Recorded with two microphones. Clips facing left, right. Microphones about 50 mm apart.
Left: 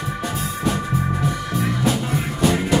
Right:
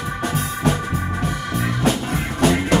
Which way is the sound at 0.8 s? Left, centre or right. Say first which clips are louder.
Left 1 dB; right.